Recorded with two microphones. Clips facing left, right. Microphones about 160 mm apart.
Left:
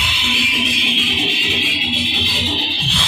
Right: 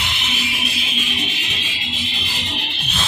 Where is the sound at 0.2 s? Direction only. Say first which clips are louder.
Left 8 dB; 90° left.